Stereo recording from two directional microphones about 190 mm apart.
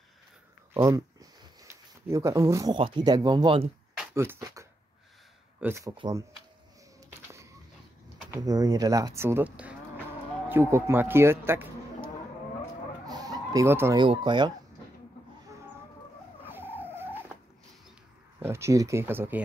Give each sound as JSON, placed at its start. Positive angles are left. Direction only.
{"t": 0.7, "sound": "speech", "side_deg": -15}
{"t": 3.9, "sound": "a sound", "side_deg": -10}
{"t": 5.6, "sound": "speech", "side_deg": -15}
{"t": 8.3, "sound": "speech", "side_deg": -20}
{"t": 13.0, "sound": "chicken", "side_deg": -20}
{"t": 13.9, "sound": "speech", "side_deg": -25}
{"t": 16.4, "sound": "vehicle", "side_deg": -10}
{"t": 18.4, "sound": "speech", "side_deg": -15}